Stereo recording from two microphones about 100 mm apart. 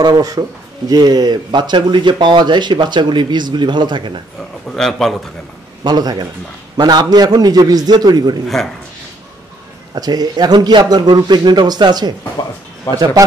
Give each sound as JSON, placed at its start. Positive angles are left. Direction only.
{"t": 0.0, "sound": "speech", "side_deg": -40}
{"t": 4.6, "sound": "speech", "side_deg": 5}
{"t": 5.9, "sound": "a man's voice", "side_deg": -45}
{"t": 9.9, "sound": "speech", "side_deg": -40}